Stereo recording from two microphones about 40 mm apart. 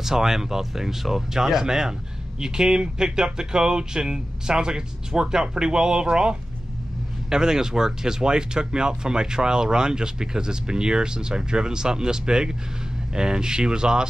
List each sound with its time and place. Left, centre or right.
0.0 s speech: centre